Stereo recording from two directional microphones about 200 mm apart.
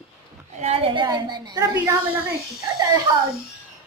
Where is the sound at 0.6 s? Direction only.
30° right (ahead or behind).